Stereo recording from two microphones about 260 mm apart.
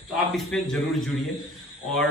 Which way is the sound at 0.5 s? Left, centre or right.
Centre.